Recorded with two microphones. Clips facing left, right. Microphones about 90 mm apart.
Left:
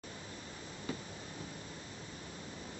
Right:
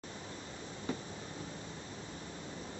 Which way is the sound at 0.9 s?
30° right (ahead or behind).